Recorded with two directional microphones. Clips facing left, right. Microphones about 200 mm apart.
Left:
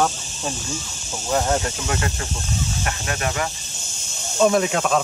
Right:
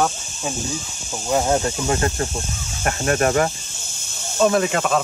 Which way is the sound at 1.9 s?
35° right (ahead or behind).